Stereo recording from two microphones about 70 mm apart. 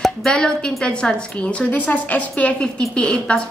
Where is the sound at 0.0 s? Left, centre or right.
Centre.